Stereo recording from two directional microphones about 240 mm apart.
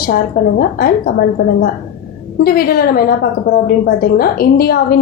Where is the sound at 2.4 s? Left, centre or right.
Left.